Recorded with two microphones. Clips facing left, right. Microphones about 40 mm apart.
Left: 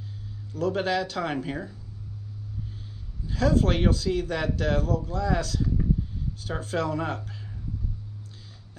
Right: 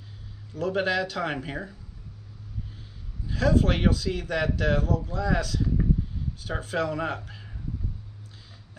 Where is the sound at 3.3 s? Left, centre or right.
Centre.